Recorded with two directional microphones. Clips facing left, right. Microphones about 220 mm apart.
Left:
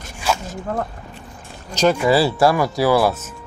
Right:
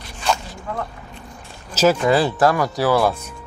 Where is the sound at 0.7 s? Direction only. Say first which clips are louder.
Left 3 dB; 45° left (ahead or behind).